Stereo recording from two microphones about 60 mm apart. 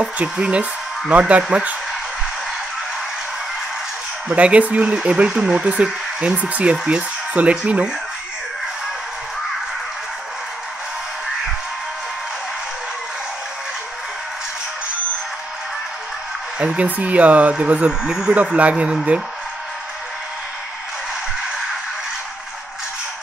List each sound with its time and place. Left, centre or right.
0.0 s speech: right
4.3 s speech: right
16.5 s speech: centre